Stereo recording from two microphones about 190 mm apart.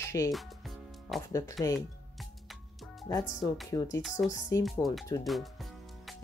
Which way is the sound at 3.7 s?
20° left (ahead or behind).